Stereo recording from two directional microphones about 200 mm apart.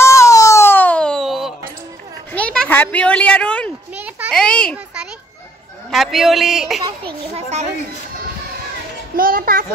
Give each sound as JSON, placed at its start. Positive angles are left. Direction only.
{"t": 0.0, "sound": "a sound", "side_deg": 15}
{"t": 2.5, "sound": "a woman's voice", "side_deg": 5}
{"t": 3.9, "sound": "children playing", "side_deg": -5}
{"t": 4.3, "sound": "a child's voice", "side_deg": 5}
{"t": 6.8, "sound": "a child's voice", "side_deg": -30}
{"t": 9.1, "sound": "a child's voice", "side_deg": -45}